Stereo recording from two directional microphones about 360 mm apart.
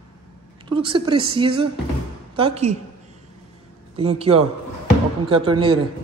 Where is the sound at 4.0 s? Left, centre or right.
Centre.